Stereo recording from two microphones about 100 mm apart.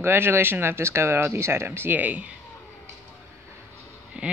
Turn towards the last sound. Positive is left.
turn(degrees=-10)  # may be behind; listen again after turning